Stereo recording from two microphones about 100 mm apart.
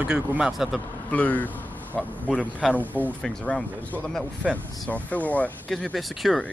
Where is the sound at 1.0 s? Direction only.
15° left (ahead or behind).